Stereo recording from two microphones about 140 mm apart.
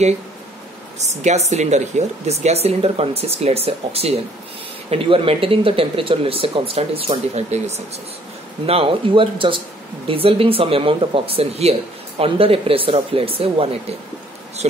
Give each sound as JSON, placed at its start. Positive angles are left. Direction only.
{"t": 0.9, "sound": "speech", "side_deg": -50}
{"t": 8.6, "sound": "speech", "side_deg": -40}